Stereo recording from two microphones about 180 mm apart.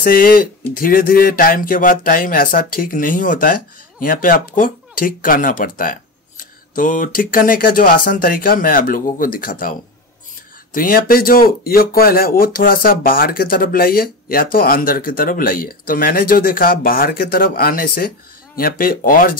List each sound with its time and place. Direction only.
0.0 s speech: 55° left (ahead or behind)